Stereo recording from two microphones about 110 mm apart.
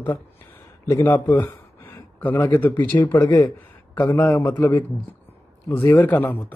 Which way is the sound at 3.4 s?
25° left (ahead or behind).